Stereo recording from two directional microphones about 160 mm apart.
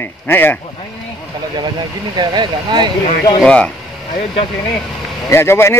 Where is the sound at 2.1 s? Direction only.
25° right (ahead or behind).